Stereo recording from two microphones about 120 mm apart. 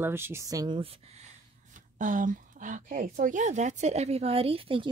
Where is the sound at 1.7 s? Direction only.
90° right; by 4.9 s 45° right (ahead or behind).